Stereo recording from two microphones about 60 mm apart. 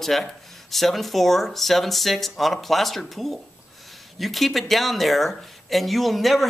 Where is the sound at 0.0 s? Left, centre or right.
Centre.